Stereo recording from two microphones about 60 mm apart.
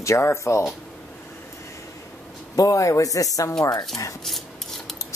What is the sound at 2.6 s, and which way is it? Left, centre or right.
Speech, left.